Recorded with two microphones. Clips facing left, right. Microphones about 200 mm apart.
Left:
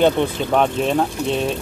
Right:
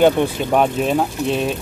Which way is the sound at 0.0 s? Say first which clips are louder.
Right 2 dB; 10° right (ahead or behind).